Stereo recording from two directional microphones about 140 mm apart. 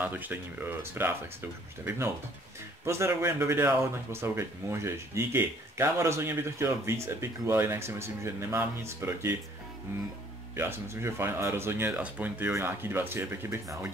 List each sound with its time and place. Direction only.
0.0 s speech: 15° right (ahead or behind)
2.8 s speech: 20° right (ahead or behind)
10.5 s speech: 20° right (ahead or behind)